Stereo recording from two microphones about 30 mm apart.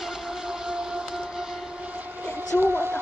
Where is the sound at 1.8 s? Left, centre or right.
Right.